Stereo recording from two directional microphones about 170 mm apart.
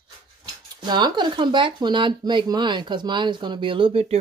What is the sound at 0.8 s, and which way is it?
Speech, 25° right (ahead or behind).